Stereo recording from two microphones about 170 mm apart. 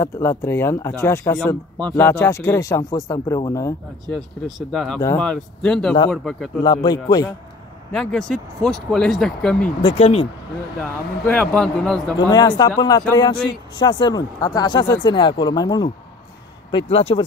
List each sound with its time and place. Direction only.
0.0 s speech: 15° left (ahead or behind)
4.6 s speech: centre (ahead or behind)
6.6 s speech: 25° left (ahead or behind)
7.9 s speech: 5° left (ahead or behind)
9.8 s speech: 35° left (ahead or behind)
10.8 s speech: 5° left (ahead or behind)
12.2 s speech: 25° left (ahead or behind)
16.7 s speech: 35° left (ahead or behind)